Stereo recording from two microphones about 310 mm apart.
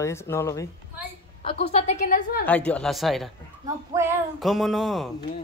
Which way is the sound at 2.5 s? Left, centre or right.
Centre.